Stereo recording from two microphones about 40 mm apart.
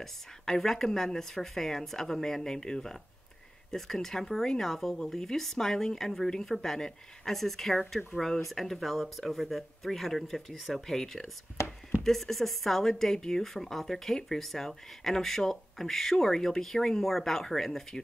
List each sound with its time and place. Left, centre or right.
0.0 s a woman's voice: centre